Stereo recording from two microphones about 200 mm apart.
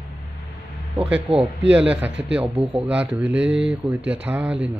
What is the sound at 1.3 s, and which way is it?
Speech, 30° right (ahead or behind).